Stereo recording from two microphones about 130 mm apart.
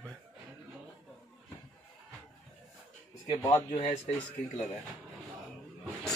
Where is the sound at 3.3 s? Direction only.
35° left (ahead or behind).